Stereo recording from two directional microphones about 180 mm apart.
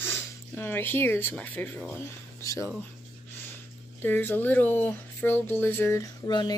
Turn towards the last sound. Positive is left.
turn(degrees=25)  # may be behind; listen again after turning